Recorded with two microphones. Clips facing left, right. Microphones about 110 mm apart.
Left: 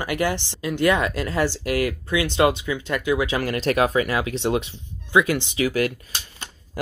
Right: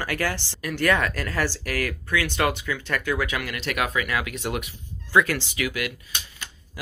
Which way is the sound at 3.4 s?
40° left (ahead or behind).